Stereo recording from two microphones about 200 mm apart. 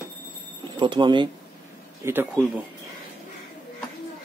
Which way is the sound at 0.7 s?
25° right (ahead or behind).